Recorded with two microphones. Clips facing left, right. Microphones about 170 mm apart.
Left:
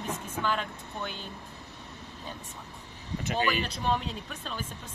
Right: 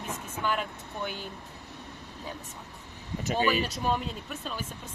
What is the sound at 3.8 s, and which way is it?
Speech, 5° right (ahead or behind).